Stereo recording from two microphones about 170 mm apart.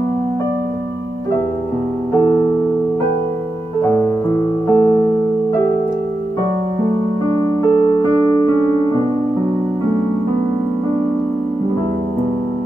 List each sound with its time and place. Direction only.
3.9 s music: 15° left (ahead or behind)
7.6 s music: 15° left (ahead or behind)